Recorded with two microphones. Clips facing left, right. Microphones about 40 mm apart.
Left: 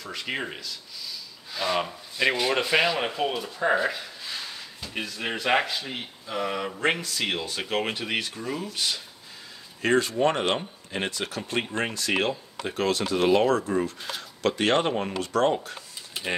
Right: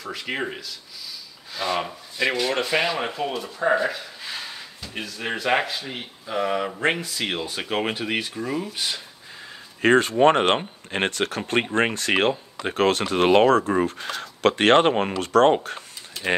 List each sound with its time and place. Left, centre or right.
0.0 s speech: centre
1.5 s speech: centre
2.9 s speech: centre
9.8 s speech: right